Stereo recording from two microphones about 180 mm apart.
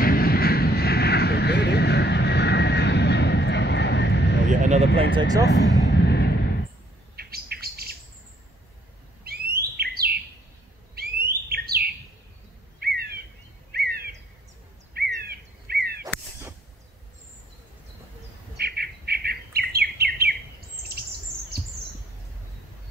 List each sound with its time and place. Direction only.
0.0 s vehicle: 55° left (ahead or behind); by 4.4 s 70° left (ahead or behind)
4.5 s vehicle: 40° right (ahead or behind)
5.1 s speech: 20° right (ahead or behind)
5.5 s a sound: 75° left (ahead or behind)
7.2 s bird: 60° right (ahead or behind)
9.2 s bird: 60° right (ahead or behind)
11.0 s alarm: 60° right (ahead or behind)
12.8 s bird vocalization: 60° right (ahead or behind)
18.6 s bird: 60° right (ahead or behind)